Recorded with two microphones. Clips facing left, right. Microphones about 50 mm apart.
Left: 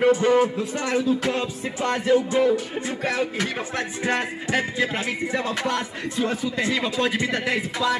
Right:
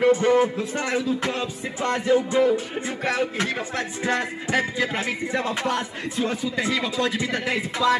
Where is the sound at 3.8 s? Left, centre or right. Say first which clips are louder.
Left 1 dB; left.